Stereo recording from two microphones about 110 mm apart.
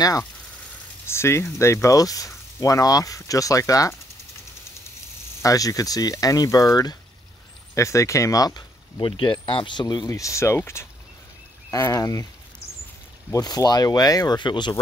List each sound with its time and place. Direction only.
1.0 s speech: 25° left (ahead or behind)
5.4 s speech: 30° left (ahead or behind)
9.0 s speech: 50° left (ahead or behind)
10.0 s speech: 30° left (ahead or behind)
13.3 s speech: 35° left (ahead or behind)